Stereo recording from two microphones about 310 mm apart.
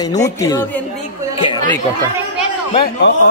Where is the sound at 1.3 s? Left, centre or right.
Centre.